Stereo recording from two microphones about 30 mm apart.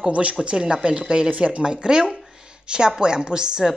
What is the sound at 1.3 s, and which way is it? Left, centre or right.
Speech, right.